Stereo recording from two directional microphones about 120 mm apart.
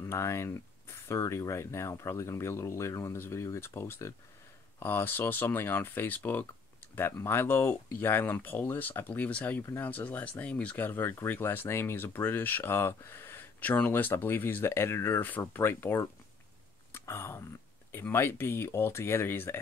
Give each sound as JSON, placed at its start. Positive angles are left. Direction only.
{"t": 0.0, "sound": "speech", "side_deg": 25}
{"t": 16.9, "sound": "a sound", "side_deg": 20}
{"t": 17.9, "sound": "speech", "side_deg": 20}